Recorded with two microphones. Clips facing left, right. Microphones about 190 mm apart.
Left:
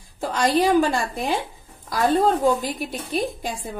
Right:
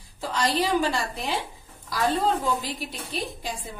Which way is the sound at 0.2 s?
50° left (ahead or behind).